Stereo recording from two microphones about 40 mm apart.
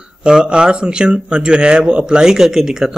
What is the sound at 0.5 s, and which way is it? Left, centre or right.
Speech, right.